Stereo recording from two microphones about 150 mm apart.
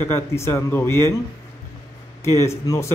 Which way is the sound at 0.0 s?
20° left (ahead or behind).